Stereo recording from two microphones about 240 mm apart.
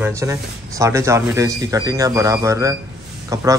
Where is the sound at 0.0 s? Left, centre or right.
Centre.